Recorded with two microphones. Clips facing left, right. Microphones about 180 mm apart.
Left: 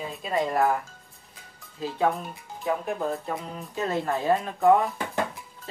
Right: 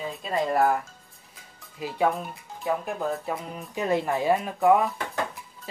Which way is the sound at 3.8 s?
15° right (ahead or behind).